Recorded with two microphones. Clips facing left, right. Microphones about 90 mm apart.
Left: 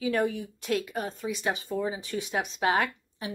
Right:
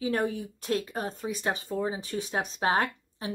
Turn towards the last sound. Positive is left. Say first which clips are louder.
# even
turn(degrees=-35)  # may be behind; listen again after turning